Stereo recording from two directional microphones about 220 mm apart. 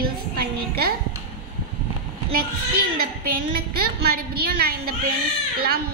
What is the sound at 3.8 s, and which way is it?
A woman's voice, 45° right (ahead or behind).